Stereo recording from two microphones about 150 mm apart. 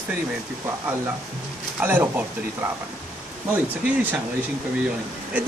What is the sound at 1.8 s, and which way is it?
Speech, 10° right (ahead or behind).